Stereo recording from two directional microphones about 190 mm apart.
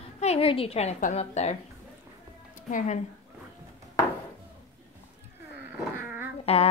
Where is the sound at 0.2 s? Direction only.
30° left (ahead or behind).